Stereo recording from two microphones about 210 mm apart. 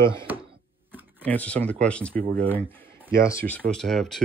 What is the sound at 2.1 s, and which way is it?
Speech, 40° right (ahead or behind).